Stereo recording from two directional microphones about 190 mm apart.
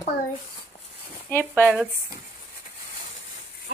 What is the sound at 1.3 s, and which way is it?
Speech, 10° left (ahead or behind).